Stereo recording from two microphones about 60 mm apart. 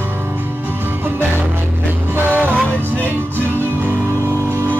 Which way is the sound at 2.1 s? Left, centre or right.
Right.